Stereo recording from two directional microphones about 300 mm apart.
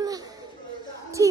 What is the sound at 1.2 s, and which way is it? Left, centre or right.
Speech, centre.